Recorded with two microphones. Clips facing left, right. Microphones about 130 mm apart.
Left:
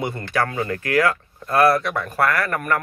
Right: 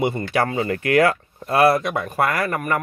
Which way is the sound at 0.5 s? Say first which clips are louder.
Right 5 dB; 25° right (ahead or behind).